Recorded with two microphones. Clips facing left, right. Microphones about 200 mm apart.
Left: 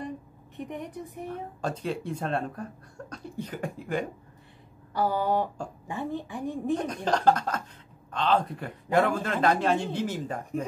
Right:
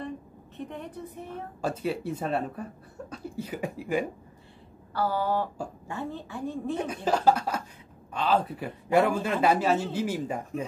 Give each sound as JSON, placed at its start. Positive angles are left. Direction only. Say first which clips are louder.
{"t": 0.6, "sound": "a woman's voice", "louder": "left 1 dB", "side_deg": 15}
{"t": 1.6, "sound": "speech", "louder": "right 3 dB", "side_deg": -5}
{"t": 4.9, "sound": "a woman's voice", "louder": "left 1 dB", "side_deg": 15}
{"t": 7.1, "sound": "speech", "louder": "even", "side_deg": -5}